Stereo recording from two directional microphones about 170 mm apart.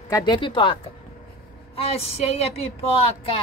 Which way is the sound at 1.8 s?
35° left (ahead or behind).